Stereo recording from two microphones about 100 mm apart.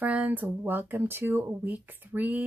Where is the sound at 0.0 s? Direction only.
15° right (ahead or behind).